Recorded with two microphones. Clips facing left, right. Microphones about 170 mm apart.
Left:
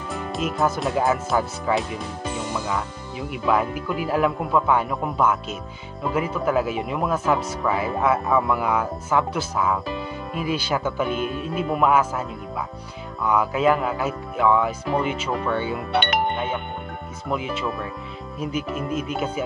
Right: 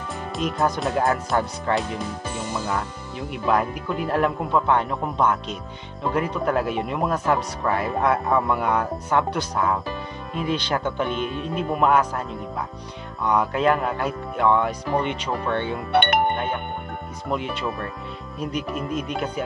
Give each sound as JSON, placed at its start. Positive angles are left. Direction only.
{"t": 0.1, "sound": "speech", "side_deg": 0}
{"t": 3.2, "sound": "speech", "side_deg": 5}
{"t": 13.3, "sound": "speech", "side_deg": 5}
{"t": 15.9, "sound": "music", "side_deg": -55}
{"t": 17.3, "sound": "speech", "side_deg": 0}